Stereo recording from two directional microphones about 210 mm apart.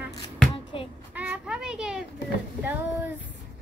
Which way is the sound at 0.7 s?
25° left (ahead or behind).